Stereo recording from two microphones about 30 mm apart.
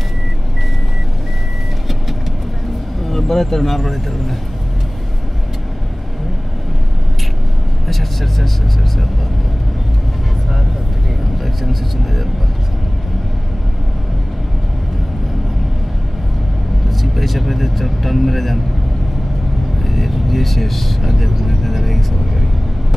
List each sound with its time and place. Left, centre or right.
3.0 s speech: centre
7.9 s vehicle: centre
11.4 s speech: centre
16.9 s speech: centre
19.8 s vehicle: centre
21.8 s speech: centre